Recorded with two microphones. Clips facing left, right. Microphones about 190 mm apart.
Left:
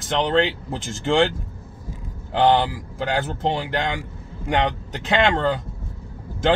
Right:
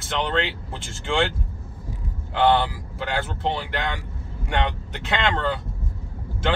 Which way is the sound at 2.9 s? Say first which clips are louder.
Left 4 dB; 40° left (ahead or behind).